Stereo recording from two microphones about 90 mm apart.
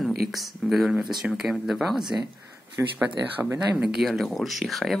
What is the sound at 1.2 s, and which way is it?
Speech, 10° right (ahead or behind).